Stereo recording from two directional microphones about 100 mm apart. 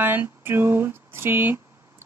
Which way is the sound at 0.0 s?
20° right (ahead or behind).